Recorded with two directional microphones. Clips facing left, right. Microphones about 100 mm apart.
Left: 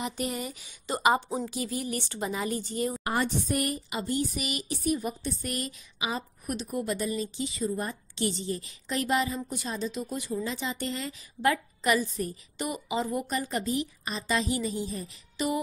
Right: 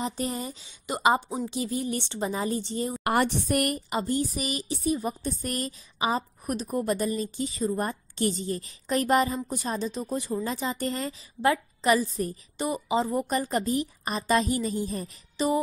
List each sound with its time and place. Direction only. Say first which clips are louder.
0.0 s speech: right 2 dB; 30° right (ahead or behind)
3.0 s a woman's voice: right 4 dB; 65° right (ahead or behind)
4.0 s a woman's voice: even; 35° right (ahead or behind)
5.2 s a woman's voice: right 2 dB; 40° right (ahead or behind)
11.4 s a woman's voice: right 3 dB; 30° right (ahead or behind); by 15.0 s 45° right (ahead or behind)
15.3 s music: right 4 dB; 30° right (ahead or behind)